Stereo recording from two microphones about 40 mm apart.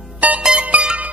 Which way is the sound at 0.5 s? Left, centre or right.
Right.